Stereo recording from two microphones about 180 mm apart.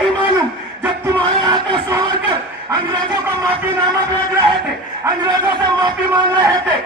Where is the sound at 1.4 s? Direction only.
20° right (ahead or behind).